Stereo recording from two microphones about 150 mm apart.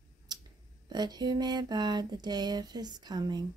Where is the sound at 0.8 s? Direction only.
25° right (ahead or behind).